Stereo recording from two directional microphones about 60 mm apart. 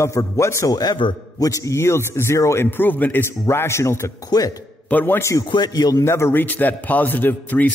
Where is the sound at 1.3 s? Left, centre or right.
Left.